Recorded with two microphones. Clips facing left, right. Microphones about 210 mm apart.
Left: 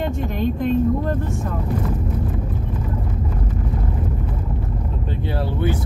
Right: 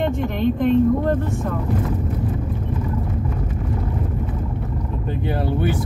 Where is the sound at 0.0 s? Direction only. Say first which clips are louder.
Right 2 dB; 55° right (ahead or behind).